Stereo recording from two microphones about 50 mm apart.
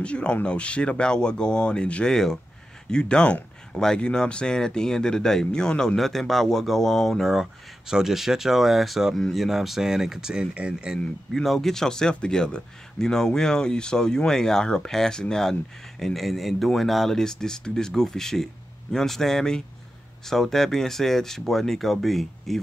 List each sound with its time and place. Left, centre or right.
0.0 s speech: left
2.0 s speech: centre
5.9 s speech: centre
7.2 s speech: centre
11.3 s speech: centre